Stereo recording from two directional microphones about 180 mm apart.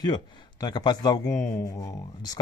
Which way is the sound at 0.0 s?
25° left (ahead or behind).